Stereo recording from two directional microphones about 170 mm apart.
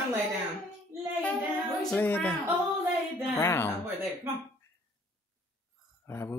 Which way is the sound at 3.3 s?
15° left (ahead or behind).